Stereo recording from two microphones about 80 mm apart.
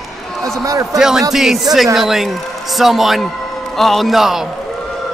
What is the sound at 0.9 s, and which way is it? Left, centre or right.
A man's voice, centre.